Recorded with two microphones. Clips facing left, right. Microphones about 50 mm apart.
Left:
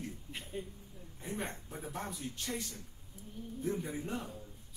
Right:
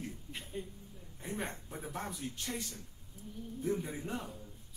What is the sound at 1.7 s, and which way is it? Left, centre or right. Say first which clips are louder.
Speech: even; centre.